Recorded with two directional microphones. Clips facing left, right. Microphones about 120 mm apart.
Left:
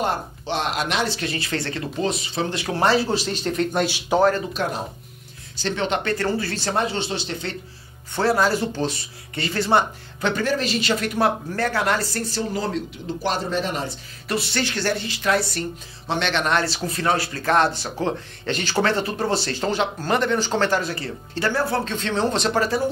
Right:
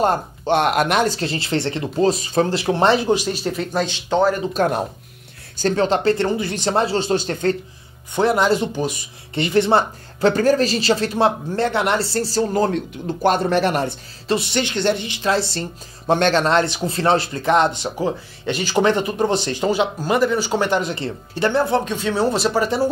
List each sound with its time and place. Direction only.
0.0 s speech: 50° right (ahead or behind)
1.2 s speech: 30° right (ahead or behind)
2.0 s speech: 40° right (ahead or behind)
2.5 s speech: 30° right (ahead or behind); by 3.8 s 5° right (ahead or behind)
3.8 s speech: 10° left (ahead or behind)
4.6 s speech: 45° right (ahead or behind)
6.2 s speech: 20° right (ahead or behind)
6.8 s speech: 40° right (ahead or behind)
8.1 s speech: 20° right (ahead or behind); by 13.5 s 50° right (ahead or behind)
13.5 s speech: 75° right (ahead or behind)
14.2 s speech: 20° right (ahead or behind)
16.1 s speech: 45° right (ahead or behind)
16.6 s speech: 25° right (ahead or behind)
21.9 s speech: 10° right (ahead or behind)